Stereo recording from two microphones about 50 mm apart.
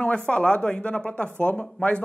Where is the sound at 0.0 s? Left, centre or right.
Left.